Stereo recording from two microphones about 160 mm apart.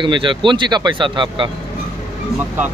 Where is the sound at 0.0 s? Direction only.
30° right (ahead or behind).